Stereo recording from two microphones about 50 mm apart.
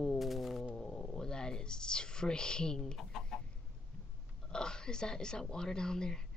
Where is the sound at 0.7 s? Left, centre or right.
Centre.